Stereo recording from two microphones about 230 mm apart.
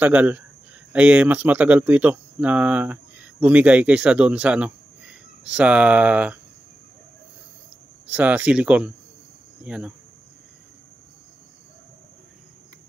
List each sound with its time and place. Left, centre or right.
0.0 s speech: centre
8.1 s speech: centre